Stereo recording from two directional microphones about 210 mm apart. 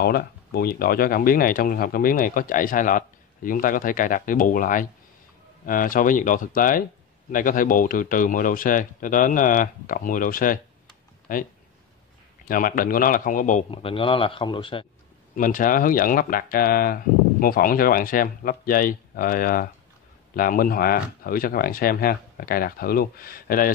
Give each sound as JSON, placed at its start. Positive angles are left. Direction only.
{"t": 0.0, "sound": "speech", "side_deg": 45}
{"t": 12.4, "sound": "speech", "side_deg": 40}
{"t": 13.7, "sound": "speech", "side_deg": 25}
{"t": 15.3, "sound": "speech", "side_deg": 40}